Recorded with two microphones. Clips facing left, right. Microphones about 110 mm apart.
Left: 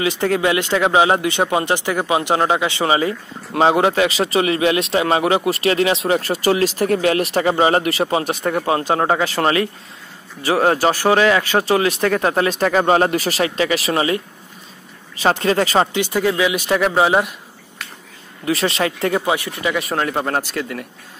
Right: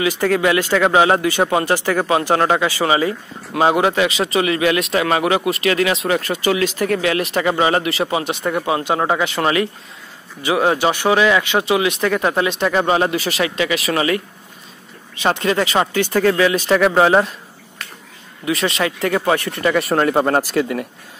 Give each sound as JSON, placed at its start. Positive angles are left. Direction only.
{"t": 0.0, "sound": "speech", "side_deg": 25}
{"t": 15.9, "sound": "speech", "side_deg": 15}
{"t": 18.4, "sound": "speech", "side_deg": 35}
{"t": 19.2, "sound": "speech", "side_deg": 5}